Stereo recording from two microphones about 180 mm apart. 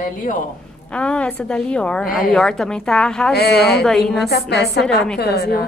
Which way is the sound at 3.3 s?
65° left (ahead or behind).